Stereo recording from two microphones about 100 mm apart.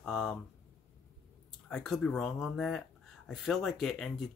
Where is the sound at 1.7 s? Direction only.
5° left (ahead or behind).